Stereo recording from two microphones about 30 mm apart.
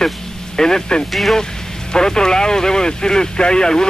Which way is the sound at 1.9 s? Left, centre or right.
Left.